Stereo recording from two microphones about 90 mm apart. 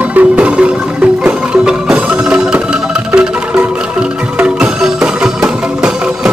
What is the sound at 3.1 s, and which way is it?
Music, 20° right (ahead or behind).